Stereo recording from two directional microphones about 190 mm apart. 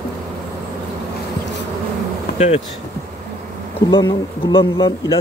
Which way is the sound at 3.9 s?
20° left (ahead or behind).